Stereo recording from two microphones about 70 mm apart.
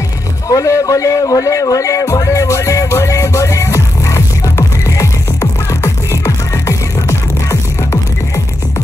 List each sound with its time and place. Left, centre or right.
0.5 s music: left